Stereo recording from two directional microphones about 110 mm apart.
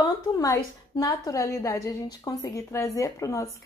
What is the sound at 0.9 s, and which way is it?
A woman's voice, 30° left (ahead or behind).